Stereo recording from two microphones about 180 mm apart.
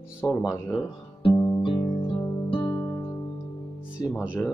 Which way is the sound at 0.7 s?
30° left (ahead or behind).